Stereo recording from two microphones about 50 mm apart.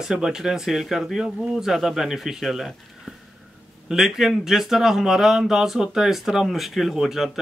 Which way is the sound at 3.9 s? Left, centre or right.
Centre.